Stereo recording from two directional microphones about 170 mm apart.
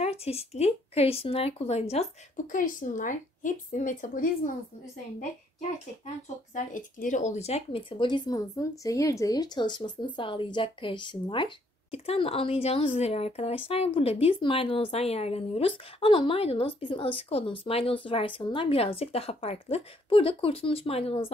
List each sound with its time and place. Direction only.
0.0 s speech: 35° left (ahead or behind)
6.5 s speech: 50° left (ahead or behind); by 21.3 s 35° left (ahead or behind)